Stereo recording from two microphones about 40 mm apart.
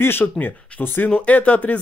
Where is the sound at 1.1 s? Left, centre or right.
Left.